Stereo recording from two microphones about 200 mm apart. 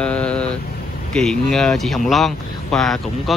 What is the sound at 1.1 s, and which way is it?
A man's voice, centre (ahead or behind).